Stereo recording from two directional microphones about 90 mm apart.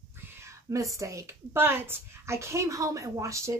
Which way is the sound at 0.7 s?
35° right (ahead or behind).